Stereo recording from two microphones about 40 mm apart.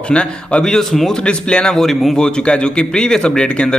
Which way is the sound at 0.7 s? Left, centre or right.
Centre.